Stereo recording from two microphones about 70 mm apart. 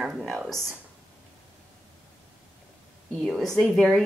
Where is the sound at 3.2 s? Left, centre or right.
Centre.